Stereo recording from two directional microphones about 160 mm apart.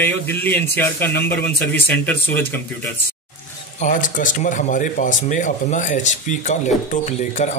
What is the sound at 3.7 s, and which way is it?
Speech, 50° left (ahead or behind).